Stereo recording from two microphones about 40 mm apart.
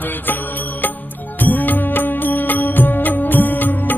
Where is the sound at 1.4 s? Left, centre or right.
Left.